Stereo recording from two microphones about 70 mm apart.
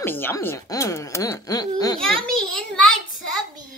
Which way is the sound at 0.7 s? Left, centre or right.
Left.